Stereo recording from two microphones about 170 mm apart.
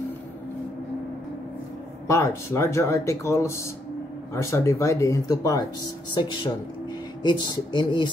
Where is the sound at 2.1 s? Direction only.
15° left (ahead or behind).